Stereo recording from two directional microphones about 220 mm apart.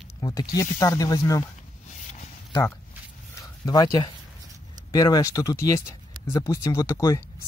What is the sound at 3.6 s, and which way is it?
Speech, 15° left (ahead or behind).